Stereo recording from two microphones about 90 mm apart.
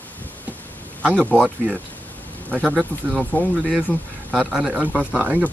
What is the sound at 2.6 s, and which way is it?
Speech, 15° right (ahead or behind).